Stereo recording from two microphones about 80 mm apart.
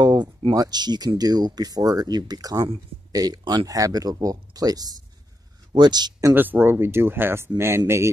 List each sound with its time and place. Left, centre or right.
0.0 s speech: right
6.3 s speech: right